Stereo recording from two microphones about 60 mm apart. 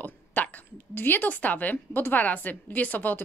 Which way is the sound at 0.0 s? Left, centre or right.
Left.